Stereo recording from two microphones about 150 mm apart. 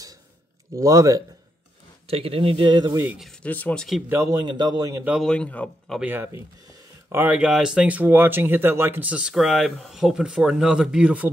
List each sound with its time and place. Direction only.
0.7 s a man's voice: 20° right (ahead or behind)
2.0 s speech: 40° right (ahead or behind)
3.1 s speech: centre (ahead or behind)
3.4 s a man's voice: 10° left (ahead or behind)
4.1 s a man's voice: 20° right (ahead or behind)
5.0 s speech: 5° right (ahead or behind)
5.3 s a man's voice: 10° left (ahead or behind)
5.9 s speech: 15° right (ahead or behind)